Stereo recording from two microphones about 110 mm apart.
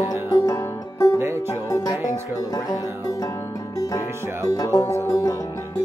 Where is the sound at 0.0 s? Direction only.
30° left (ahead or behind).